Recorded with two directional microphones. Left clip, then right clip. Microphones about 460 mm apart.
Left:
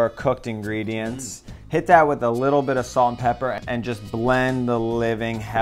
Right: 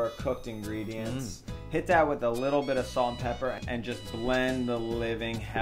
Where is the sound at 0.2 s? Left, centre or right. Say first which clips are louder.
Left 10 dB; left.